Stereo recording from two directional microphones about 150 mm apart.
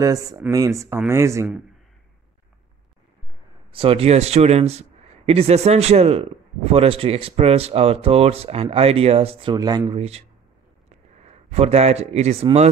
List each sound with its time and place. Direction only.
0.0 s speech: 25° right (ahead or behind)
3.7 s a man's voice: 40° right (ahead or behind)
9.6 s speech: 25° right (ahead or behind)
9.9 s speech: 45° right (ahead or behind)